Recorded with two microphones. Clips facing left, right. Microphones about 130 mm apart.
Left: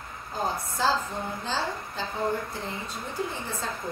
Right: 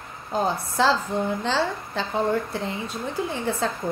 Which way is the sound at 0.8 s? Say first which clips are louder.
Right 6 dB; 80° right.